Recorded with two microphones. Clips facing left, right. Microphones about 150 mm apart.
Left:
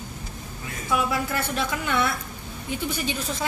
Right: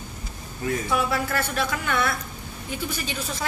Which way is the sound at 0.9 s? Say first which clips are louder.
Left 3 dB; 15° left (ahead or behind).